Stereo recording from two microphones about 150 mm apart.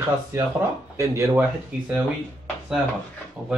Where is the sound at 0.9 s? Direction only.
20° right (ahead or behind).